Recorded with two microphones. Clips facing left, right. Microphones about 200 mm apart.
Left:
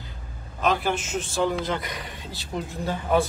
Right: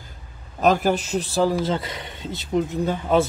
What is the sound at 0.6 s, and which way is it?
A man's voice, 40° right (ahead or behind).